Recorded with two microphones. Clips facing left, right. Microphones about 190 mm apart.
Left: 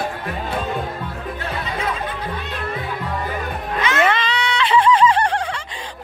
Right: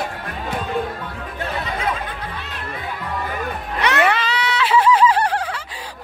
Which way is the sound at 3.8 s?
70° right (ahead or behind).